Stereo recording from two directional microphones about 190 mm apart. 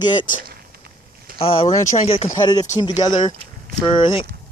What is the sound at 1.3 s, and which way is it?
Speech, 30° left (ahead or behind).